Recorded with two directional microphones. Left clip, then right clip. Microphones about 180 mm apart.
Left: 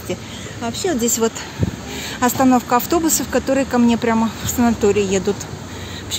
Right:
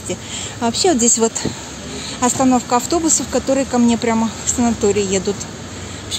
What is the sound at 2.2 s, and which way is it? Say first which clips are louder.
Speech: even; centre (ahead or behind).